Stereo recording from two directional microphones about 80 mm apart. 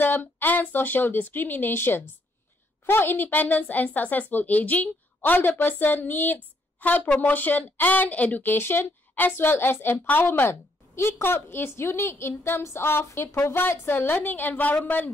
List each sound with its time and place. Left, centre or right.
0.0 s a woman's voice: left